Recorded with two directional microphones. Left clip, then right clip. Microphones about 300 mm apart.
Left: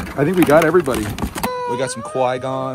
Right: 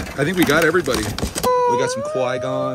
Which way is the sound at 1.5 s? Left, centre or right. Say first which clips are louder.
Right 8 dB; right.